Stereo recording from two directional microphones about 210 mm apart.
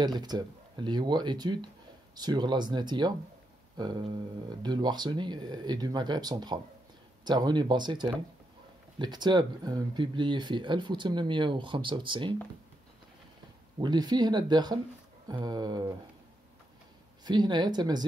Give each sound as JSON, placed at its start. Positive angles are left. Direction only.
{"t": 0.0, "sound": "speech", "side_deg": -20}
{"t": 13.7, "sound": "speech", "side_deg": -20}
{"t": 17.2, "sound": "speech", "side_deg": -20}